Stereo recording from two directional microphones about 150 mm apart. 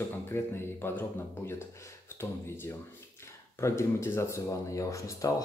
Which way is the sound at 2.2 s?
15° left (ahead or behind).